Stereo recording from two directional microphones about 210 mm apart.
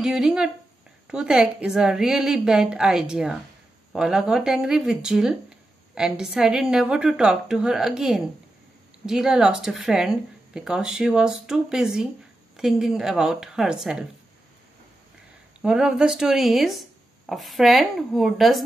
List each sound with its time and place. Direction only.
0.0 s speech: centre (ahead or behind)
15.6 s speech: 5° right (ahead or behind)